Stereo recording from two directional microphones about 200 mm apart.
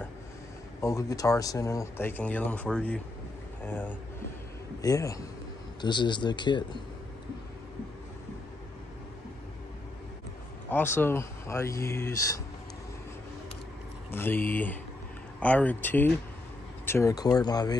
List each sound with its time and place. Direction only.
0.7 s speech: 15° left (ahead or behind)
10.7 s speech: 10° left (ahead or behind)
14.1 s speech: 10° left (ahead or behind)